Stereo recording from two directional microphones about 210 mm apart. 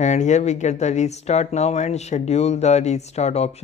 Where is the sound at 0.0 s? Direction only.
35° left (ahead or behind).